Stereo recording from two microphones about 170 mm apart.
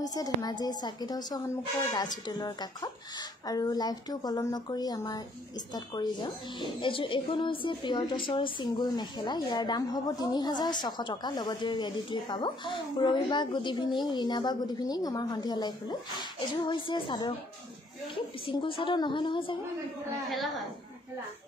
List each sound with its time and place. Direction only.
0.0 s speech: 20° left (ahead or behind)
20.2 s a woman's voice: centre (ahead or behind)